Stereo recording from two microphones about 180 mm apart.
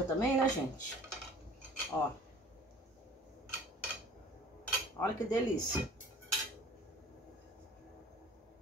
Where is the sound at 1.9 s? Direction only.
10° left (ahead or behind).